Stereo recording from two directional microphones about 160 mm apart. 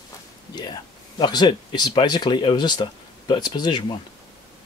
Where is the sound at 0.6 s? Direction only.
25° left (ahead or behind).